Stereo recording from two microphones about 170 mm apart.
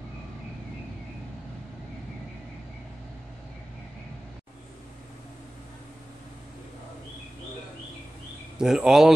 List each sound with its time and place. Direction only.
8.5 s speech: 5° right (ahead or behind)